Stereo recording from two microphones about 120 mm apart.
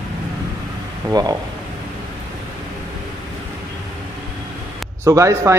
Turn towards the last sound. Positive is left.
turn(degrees=-25)  # may be behind; listen again after turning